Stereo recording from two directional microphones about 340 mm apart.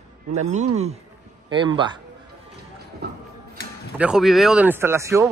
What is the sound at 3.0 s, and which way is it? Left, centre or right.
Music, right.